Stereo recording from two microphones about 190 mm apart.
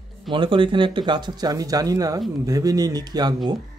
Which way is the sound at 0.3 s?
25° right (ahead or behind).